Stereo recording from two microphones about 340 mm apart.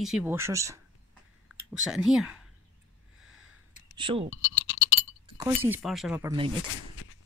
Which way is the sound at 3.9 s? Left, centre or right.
Centre.